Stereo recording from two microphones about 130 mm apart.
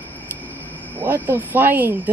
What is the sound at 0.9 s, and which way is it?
Speech, 15° right (ahead or behind).